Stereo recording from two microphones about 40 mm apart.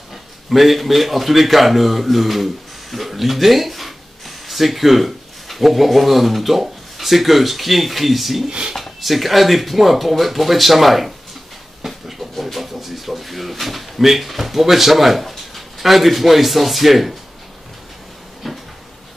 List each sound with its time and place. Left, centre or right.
0.5 s a man's voice: centre
8.5 s speech: right
8.7 s speech: centre
11.8 s a sound: centre